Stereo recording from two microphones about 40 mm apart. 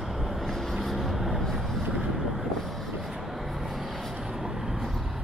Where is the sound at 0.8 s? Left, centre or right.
Centre.